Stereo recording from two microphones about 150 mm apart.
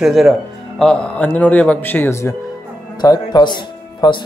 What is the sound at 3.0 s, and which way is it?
Speech, 25° left (ahead or behind).